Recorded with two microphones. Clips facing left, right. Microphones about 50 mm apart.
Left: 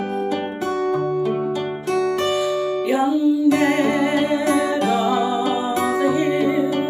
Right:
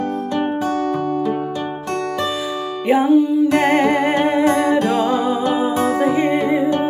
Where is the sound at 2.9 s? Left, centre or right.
Right.